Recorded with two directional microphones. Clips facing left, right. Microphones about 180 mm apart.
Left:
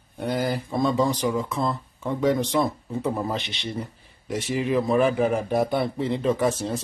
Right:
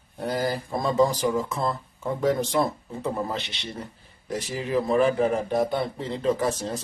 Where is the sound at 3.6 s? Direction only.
15° left (ahead or behind).